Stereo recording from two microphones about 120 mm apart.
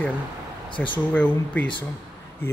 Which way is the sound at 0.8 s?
15° left (ahead or behind).